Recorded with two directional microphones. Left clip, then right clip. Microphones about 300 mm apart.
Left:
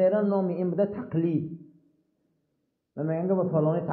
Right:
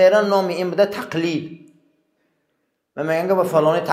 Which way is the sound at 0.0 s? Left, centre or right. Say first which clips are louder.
Right 10 dB; centre.